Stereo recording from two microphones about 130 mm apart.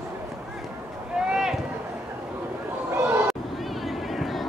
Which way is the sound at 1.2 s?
5° right (ahead or behind).